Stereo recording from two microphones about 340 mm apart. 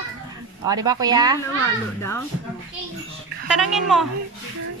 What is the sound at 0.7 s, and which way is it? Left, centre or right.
Speech, centre.